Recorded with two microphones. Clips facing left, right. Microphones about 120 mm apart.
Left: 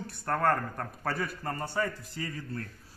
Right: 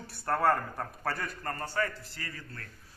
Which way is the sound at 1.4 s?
10° left (ahead or behind).